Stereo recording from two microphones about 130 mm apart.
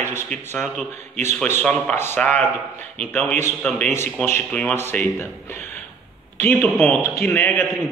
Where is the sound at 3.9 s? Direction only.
20° left (ahead or behind).